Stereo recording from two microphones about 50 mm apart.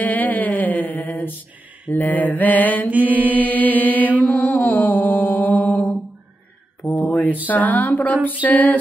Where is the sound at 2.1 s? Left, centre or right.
Left.